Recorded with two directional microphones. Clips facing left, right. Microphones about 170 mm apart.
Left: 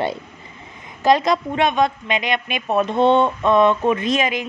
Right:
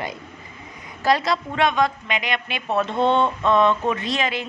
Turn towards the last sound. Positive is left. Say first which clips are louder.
# left 4 dB
turn(degrees=15)  # may be behind; listen again after turning